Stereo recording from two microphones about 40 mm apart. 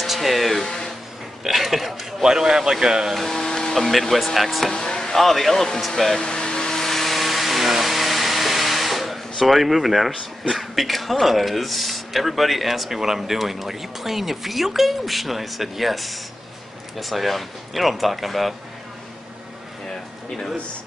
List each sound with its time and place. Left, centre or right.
0.0 s a sound: centre
2.2 s a man's voice: centre
3.2 s a sound: centre
3.9 s speech: centre
4.6 s speech: centre
6.1 s vehicle: centre
6.8 s vehicle: centre
10.5 s speech: centre